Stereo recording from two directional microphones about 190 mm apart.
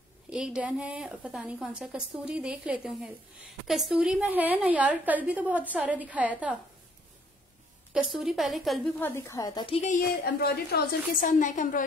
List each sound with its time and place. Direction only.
0.3 s a woman's voice: 5° right (ahead or behind)
7.9 s a woman's voice: 5° right (ahead or behind)
9.0 s a woman's voice: 15° left (ahead or behind)
9.8 s a woman's voice: 40° left (ahead or behind)
10.2 s a woman's voice: 55° left (ahead or behind)
11.2 s a woman's voice: 40° left (ahead or behind)